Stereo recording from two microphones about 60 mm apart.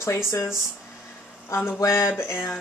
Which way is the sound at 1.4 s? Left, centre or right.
Left.